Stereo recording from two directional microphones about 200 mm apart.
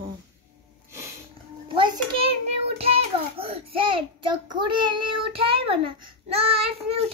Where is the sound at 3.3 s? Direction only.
30° right (ahead or behind).